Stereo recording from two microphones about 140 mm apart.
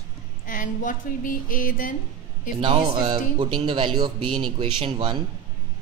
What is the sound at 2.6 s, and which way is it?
Speech, 35° right (ahead or behind).